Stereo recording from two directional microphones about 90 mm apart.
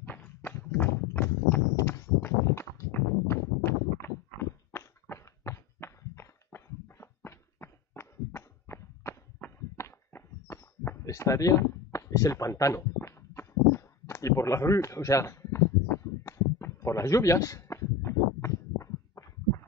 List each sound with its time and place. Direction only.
0.0 s clip-clop: 20° left (ahead or behind)
1.8 s horse: 30° left (ahead or behind)
11.1 s a sound: 40° left (ahead or behind)